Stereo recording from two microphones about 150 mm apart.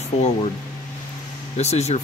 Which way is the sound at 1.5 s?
45° left (ahead or behind).